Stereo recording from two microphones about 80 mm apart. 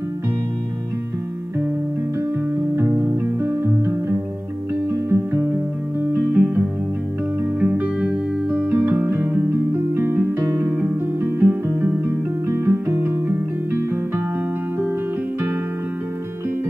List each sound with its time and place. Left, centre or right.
3.3 s music: right